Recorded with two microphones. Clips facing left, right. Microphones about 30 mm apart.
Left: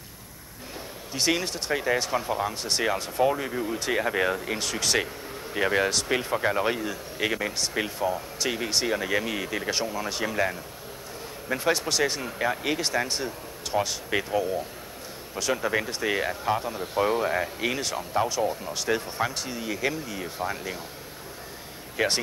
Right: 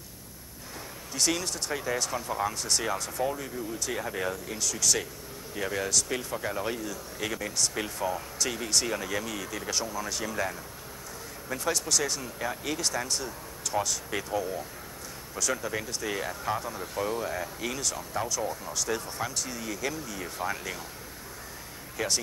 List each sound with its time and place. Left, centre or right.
1.1 s speech: left
21.9 s speech: left